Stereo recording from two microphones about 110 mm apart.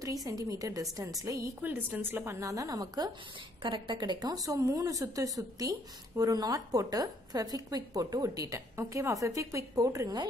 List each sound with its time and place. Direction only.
0.0 s a woman's voice: 30° right (ahead or behind)
2.4 s a woman's voice: 30° right (ahead or behind)
3.6 s a woman's voice: 45° right (ahead or behind)